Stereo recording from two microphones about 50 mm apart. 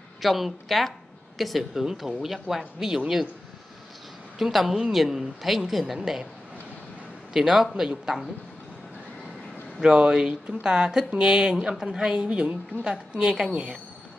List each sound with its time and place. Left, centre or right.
0.2 s speech: centre
4.4 s speech: centre
7.3 s speech: centre
9.8 s a woman's voice: centre
13.5 s a woman's voice: right